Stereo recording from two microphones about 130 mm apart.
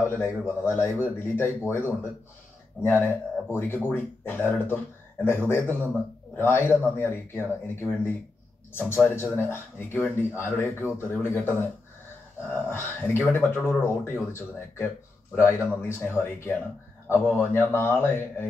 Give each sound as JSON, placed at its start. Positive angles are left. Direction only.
{"t": 0.0, "sound": "speech", "side_deg": 20}
{"t": 2.8, "sound": "speech", "side_deg": 15}